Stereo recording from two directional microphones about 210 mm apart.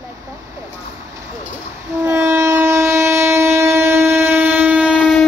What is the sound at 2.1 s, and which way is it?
Train, 10° right (ahead or behind).